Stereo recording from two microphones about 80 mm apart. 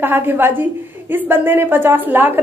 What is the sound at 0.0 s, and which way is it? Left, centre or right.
A woman's voice, right.